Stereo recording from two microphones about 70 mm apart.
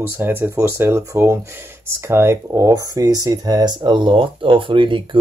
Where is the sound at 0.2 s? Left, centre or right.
Right.